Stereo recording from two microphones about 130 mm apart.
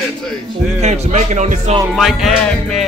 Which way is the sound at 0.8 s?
60° right (ahead or behind).